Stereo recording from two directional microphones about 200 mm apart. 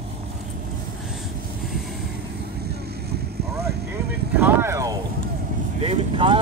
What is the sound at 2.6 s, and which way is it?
Boat, 55° right (ahead or behind).